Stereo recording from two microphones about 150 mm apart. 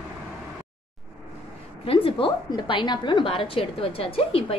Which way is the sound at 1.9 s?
35° left (ahead or behind).